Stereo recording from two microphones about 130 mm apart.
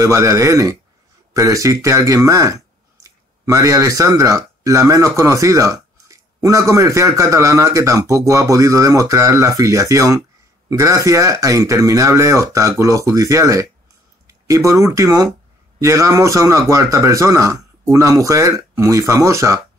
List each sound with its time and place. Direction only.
0.0 s speech: 20° right (ahead or behind)